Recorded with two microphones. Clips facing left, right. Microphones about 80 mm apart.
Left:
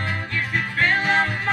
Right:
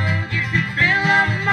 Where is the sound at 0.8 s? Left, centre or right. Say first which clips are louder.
Right 3 dB; centre.